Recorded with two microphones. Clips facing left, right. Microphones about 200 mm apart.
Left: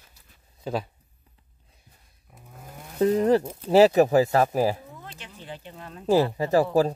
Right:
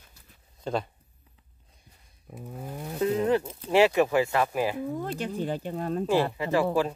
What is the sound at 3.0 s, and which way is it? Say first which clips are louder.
Speech: left 4 dB; 35° left (ahead or behind).